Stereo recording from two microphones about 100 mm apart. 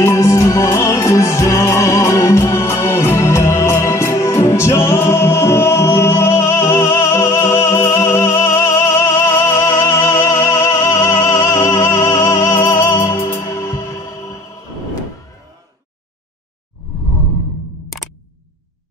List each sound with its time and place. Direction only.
0.0 s music: 30° left (ahead or behind)